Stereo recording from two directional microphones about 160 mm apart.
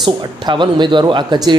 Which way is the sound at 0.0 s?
30° right (ahead or behind).